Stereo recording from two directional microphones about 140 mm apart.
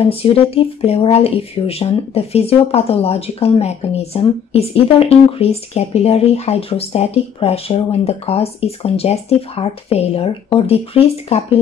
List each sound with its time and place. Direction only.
0.0 s speech: 40° left (ahead or behind)